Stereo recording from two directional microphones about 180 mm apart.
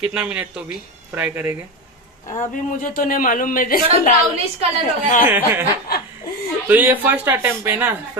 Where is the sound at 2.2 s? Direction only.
45° left (ahead or behind).